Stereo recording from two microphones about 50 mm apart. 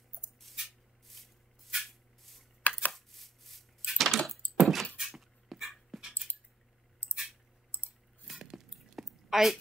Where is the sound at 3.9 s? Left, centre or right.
Centre.